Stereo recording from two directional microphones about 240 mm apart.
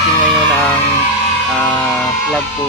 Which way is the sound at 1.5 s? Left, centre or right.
Centre.